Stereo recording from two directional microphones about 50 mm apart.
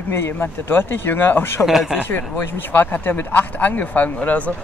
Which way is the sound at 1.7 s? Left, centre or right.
Centre.